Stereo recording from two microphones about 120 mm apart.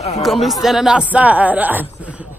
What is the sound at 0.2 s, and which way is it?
Speech, centre (ahead or behind).